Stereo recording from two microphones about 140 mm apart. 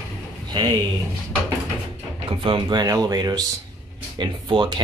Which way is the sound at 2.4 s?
35° right (ahead or behind).